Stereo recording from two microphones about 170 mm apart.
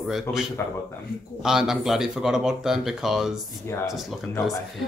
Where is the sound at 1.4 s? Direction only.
5° right (ahead or behind).